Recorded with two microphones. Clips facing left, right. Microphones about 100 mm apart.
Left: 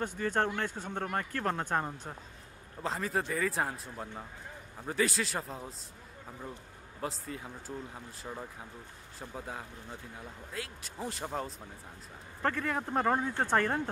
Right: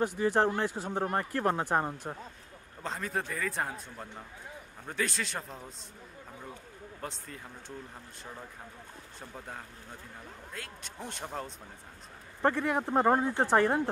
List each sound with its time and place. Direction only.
0.0 s speech: 10° right (ahead or behind)
2.8 s a man's voice: centre (ahead or behind)
7.0 s a man's voice: 5° left (ahead or behind)
9.3 s a man's voice: 5° left (ahead or behind)
12.4 s speech: 20° right (ahead or behind)